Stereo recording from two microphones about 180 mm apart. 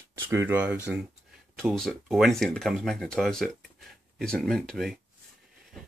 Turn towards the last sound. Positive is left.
turn(degrees=0)  # may be behind; listen again after turning